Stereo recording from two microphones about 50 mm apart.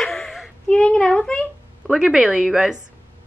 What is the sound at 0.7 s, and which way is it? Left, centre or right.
Speech, centre.